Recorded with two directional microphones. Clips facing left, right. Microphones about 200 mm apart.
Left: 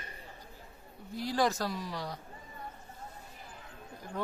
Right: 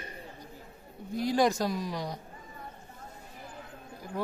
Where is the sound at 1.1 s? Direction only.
15° right (ahead or behind).